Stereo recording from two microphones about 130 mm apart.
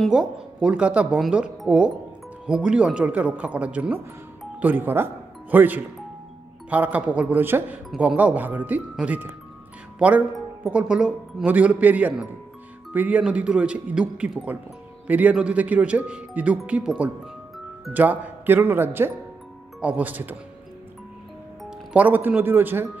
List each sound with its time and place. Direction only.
0.0 s speech: 5° right (ahead or behind)
21.6 s speech: 10° right (ahead or behind)